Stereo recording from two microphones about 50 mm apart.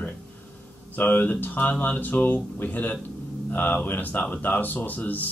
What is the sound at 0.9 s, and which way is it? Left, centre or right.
Speech, left.